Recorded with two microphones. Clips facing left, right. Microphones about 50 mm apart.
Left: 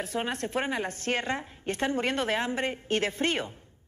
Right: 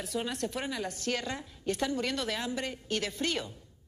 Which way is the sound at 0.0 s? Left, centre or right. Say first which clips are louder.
Left 3 dB; left.